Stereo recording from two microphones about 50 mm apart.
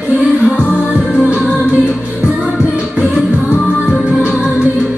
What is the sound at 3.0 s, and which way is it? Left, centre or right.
Music, right.